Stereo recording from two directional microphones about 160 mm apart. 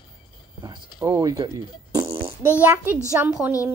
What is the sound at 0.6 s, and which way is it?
Speech, 25° right (ahead or behind).